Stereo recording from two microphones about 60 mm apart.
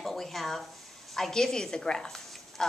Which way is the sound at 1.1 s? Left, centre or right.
Centre.